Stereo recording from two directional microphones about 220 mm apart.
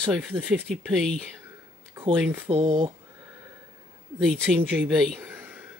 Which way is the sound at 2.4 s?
25° right (ahead or behind).